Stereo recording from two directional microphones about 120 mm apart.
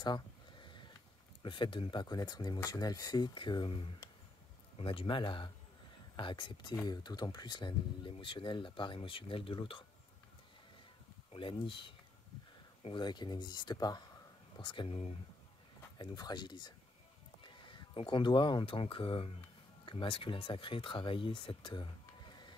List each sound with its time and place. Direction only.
0.0 s a sound: 40° left (ahead or behind)
1.4 s speech: 40° left (ahead or behind)
11.3 s speech: 45° left (ahead or behind)
16.0 s speech: 35° left (ahead or behind)